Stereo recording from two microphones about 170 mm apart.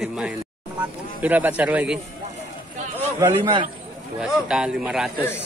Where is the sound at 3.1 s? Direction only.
15° right (ahead or behind).